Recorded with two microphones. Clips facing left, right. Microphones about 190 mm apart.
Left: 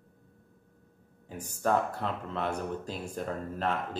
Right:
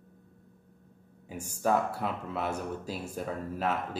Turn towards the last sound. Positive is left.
turn(degrees=-5)  # may be behind; listen again after turning